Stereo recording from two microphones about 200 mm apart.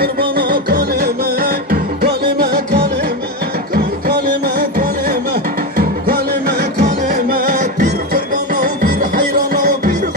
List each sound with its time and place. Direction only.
0.0 s music: 50° right (ahead or behind)
3.7 s music: 50° right (ahead or behind)